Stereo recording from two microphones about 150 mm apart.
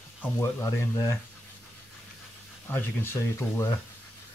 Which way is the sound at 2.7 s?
15° left (ahead or behind).